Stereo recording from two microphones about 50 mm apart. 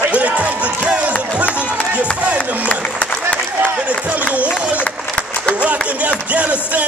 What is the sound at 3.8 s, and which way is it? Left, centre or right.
Speech, right.